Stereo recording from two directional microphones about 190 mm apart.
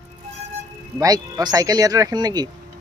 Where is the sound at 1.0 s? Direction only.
20° right (ahead or behind).